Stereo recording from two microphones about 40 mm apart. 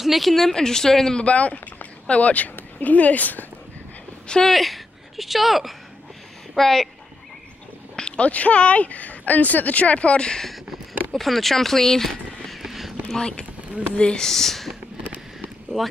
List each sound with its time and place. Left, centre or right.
0.0 s speech: centre
0.6 s speech: centre
1.1 s speech: left
4.5 s speech: centre
8.2 s speech: left
10.4 s a sound: centre
11.1 s speech: centre
12.6 s a sound: centre
13.1 s speech: centre
13.9 s speech: left
14.2 s speech: centre